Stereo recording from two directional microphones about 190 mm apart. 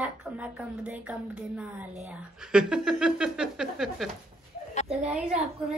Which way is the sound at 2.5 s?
5° right (ahead or behind).